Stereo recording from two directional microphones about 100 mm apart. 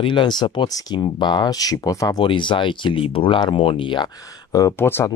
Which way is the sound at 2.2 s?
55° left (ahead or behind).